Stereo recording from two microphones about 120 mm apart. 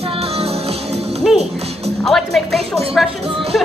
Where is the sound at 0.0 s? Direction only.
55° right (ahead or behind).